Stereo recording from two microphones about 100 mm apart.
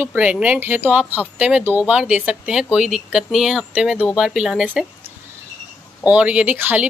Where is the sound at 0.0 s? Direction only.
15° right (ahead or behind).